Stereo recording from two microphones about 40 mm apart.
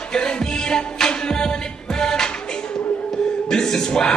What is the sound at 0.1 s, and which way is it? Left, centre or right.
Music, centre.